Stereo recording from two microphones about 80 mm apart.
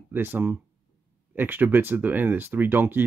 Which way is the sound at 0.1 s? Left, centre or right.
Right.